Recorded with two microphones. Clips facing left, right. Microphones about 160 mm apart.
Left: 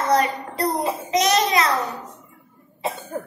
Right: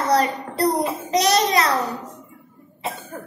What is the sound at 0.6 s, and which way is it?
A child's voice, 35° right (ahead or behind).